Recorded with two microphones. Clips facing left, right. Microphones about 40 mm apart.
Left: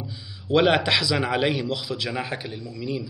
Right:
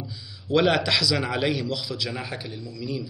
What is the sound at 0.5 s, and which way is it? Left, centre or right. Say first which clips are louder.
A man's voice: left 2 dB; left.